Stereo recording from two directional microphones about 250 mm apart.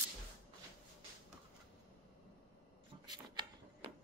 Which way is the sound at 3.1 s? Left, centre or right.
Centre.